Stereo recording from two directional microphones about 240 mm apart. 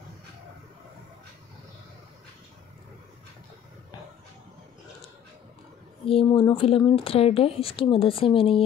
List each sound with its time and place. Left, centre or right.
6.0 s speech: left